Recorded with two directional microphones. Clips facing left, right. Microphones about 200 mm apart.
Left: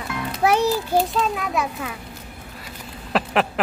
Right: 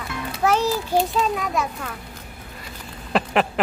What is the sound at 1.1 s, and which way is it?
Speech, centre (ahead or behind).